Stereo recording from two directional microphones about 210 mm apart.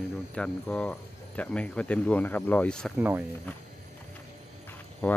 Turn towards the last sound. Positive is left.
turn(degrees=5)  # may be behind; listen again after turning